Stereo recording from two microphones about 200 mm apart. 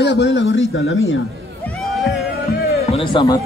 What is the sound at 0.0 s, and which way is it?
A man's voice, 60° left (ahead or behind).